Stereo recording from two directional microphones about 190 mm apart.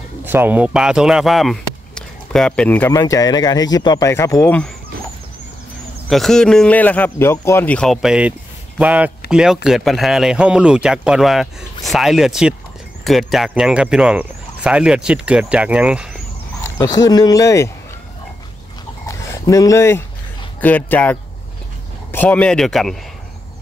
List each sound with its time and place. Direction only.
0.2 s speech: 10° right (ahead or behind); by 4.6 s 10° left (ahead or behind)
6.0 s speech: centre (ahead or behind)
16.6 s speech: 15° left (ahead or behind)
19.0 s dog: 15° left (ahead or behind)
20.6 s speech: 10° left (ahead or behind)